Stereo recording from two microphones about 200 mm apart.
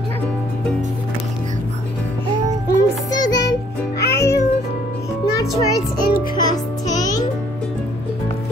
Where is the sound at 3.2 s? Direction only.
20° left (ahead or behind).